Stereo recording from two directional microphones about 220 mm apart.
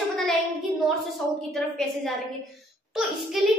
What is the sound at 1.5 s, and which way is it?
A woman's voice, centre (ahead or behind).